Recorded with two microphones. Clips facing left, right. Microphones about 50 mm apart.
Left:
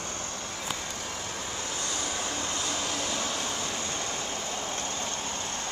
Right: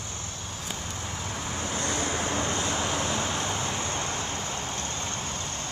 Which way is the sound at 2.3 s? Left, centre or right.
Right.